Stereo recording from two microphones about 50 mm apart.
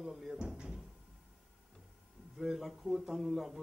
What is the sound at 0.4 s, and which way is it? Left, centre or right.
Cupboard open or close, centre.